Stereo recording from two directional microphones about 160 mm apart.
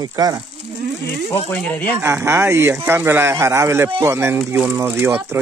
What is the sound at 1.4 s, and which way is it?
Speech, 10° left (ahead or behind).